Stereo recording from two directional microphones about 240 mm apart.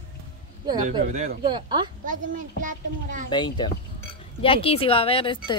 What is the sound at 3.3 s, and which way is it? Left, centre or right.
Speech, centre.